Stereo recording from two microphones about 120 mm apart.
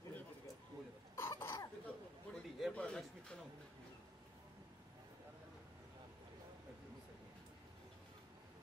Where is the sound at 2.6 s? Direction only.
5° left (ahead or behind).